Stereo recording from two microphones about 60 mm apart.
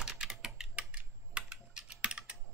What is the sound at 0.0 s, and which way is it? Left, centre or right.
Typing, centre.